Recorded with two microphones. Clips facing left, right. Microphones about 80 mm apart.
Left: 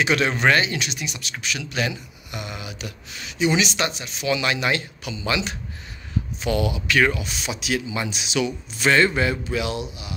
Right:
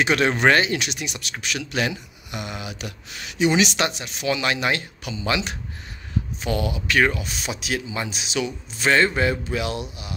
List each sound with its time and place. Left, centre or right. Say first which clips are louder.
0.0 s speech: right 1 dB; right
4.3 s speech: even; right
6.5 s speech: left 2 dB; right
7.2 s speech: even; right
9.6 s speech: left 1 dB; right